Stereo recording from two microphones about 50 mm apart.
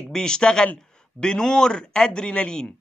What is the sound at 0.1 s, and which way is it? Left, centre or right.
A man's voice, centre.